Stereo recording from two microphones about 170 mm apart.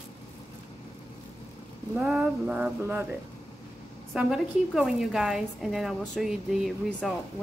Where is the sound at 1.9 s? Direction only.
5° right (ahead or behind).